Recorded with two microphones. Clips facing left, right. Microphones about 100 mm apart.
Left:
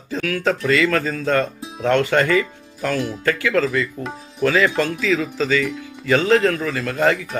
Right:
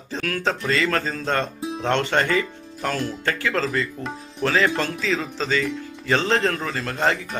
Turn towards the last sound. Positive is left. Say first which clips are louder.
# left 4 dB
turn(degrees=-30)  # may be behind; listen again after turning